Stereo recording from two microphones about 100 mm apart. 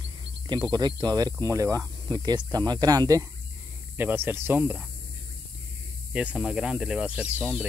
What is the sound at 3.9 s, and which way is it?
Speech, 20° right (ahead or behind).